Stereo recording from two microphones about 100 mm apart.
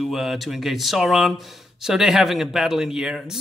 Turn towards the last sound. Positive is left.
turn(degrees=-5)  # may be behind; listen again after turning